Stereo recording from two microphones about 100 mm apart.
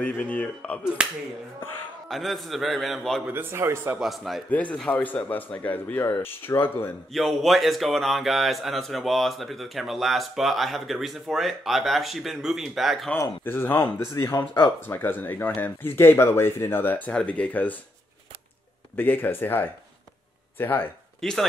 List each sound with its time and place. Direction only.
0.0 s speech: 15° left (ahead or behind)
1.0 s speech: 10° right (ahead or behind)
2.0 s a man's voice: centre (ahead or behind)
3.3 s speech: 20° right (ahead or behind)
4.0 s a man's voice: centre (ahead or behind)
4.8 s speech: 15° left (ahead or behind)
7.2 s a man's voice: centre (ahead or behind)
13.4 s speech: 20° left (ahead or behind)
14.1 s speech: 35° left (ahead or behind)
14.9 s speech: 20° left (ahead or behind)
18.9 s speech: 20° left (ahead or behind)
21.2 s speech: 5° left (ahead or behind)